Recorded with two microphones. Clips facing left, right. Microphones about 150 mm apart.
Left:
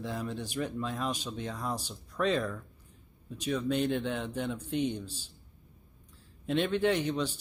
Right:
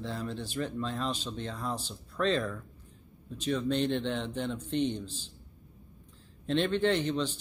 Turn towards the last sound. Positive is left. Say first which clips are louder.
# even
turn(degrees=10)  # may be behind; listen again after turning